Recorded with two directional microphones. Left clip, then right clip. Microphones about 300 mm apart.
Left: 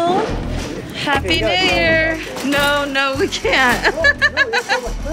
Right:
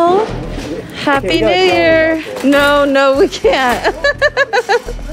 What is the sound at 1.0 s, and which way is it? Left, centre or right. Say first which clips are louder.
A woman's voice: right 5 dB; right.